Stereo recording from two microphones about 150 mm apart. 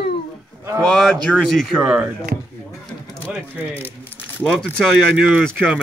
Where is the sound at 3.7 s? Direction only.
15° left (ahead or behind).